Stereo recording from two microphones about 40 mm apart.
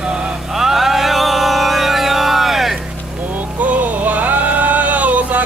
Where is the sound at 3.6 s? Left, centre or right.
Right.